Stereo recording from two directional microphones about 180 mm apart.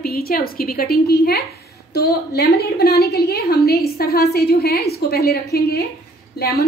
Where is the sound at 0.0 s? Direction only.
55° left (ahead or behind).